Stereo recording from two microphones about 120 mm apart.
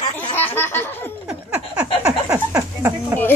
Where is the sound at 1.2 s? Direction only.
10° right (ahead or behind).